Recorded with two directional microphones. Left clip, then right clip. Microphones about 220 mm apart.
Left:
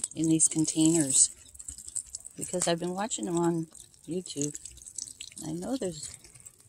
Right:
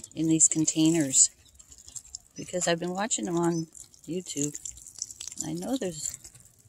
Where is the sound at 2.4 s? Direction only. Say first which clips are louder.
Right 2 dB; 10° right (ahead or behind).